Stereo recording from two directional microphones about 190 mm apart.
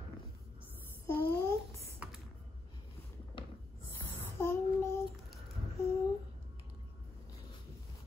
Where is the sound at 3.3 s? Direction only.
25° left (ahead or behind).